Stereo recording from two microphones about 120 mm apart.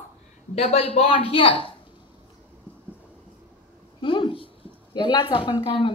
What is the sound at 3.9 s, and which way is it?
A woman's voice, 45° left (ahead or behind).